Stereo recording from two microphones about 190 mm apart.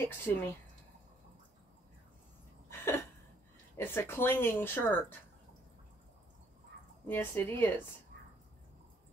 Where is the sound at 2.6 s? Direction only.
15° left (ahead or behind).